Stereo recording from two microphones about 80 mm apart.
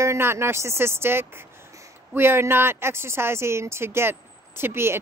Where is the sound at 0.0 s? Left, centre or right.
Right.